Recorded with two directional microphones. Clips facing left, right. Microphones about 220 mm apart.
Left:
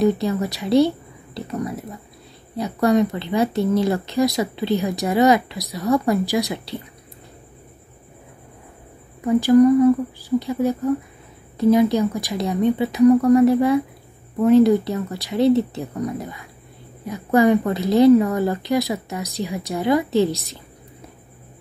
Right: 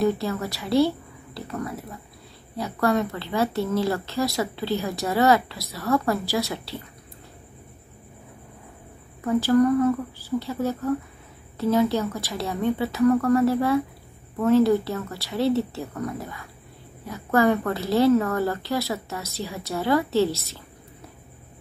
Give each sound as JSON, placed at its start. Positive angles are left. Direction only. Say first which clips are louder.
{"t": 0.0, "sound": "a woman's voice", "louder": "left 4 dB", "side_deg": 20}
{"t": 9.2, "sound": "speech", "louder": "left 6 dB", "side_deg": 15}